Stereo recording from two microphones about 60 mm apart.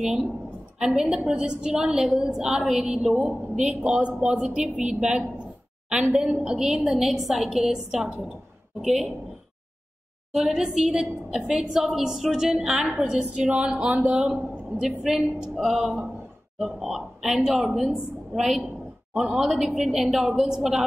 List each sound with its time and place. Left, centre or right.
0.0 s a woman's voice: centre
10.3 s a woman's voice: centre
13.0 s a woman's voice: centre
14.3 s a woman's voice: centre